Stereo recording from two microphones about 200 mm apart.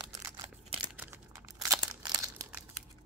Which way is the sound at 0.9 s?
15° right (ahead or behind).